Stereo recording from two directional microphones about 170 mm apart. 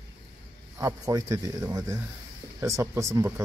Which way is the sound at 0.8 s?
20° right (ahead or behind).